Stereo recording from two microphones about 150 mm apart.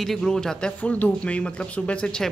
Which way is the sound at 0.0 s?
5° left (ahead or behind).